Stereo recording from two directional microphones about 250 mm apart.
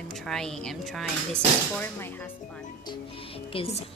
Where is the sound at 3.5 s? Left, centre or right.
Left.